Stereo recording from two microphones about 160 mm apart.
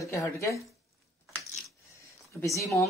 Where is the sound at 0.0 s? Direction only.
20° left (ahead or behind).